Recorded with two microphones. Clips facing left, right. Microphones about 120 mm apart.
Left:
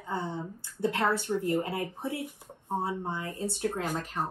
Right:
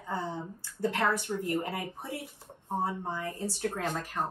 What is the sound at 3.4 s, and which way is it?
Speech, 20° left (ahead or behind).